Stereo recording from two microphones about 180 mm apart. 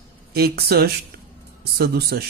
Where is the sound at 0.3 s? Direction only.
60° right (ahead or behind).